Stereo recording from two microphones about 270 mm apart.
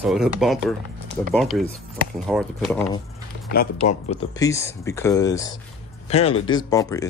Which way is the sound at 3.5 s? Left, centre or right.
Left.